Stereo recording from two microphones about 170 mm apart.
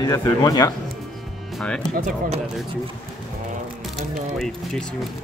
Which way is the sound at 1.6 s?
5° left (ahead or behind).